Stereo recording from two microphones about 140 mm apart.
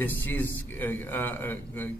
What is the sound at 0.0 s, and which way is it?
A man's voice, 15° left (ahead or behind).